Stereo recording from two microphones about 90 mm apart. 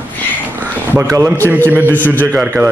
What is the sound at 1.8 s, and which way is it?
Speech, 20° left (ahead or behind).